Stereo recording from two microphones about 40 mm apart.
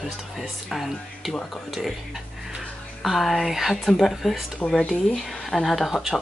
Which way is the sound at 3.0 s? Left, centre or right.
Centre.